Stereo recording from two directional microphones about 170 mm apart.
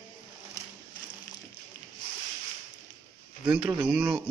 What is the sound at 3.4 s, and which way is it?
Speech, 5° right (ahead or behind).